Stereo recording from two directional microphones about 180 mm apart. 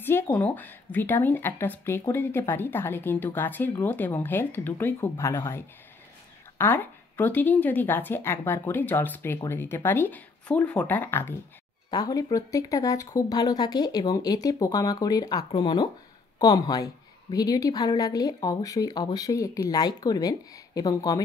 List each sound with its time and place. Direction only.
0.0 s speech: 10° left (ahead or behind)
6.6 s a woman's voice: 10° left (ahead or behind)